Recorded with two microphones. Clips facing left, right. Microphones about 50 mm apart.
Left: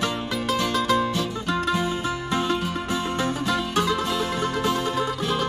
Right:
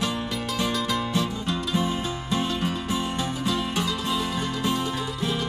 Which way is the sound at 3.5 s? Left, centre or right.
Left.